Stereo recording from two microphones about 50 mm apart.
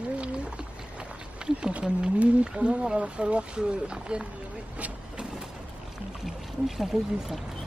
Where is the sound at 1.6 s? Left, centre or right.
Centre.